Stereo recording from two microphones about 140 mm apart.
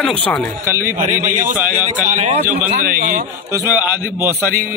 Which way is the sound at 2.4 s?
15° right (ahead or behind).